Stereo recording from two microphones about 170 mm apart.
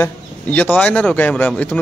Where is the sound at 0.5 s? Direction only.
10° left (ahead or behind).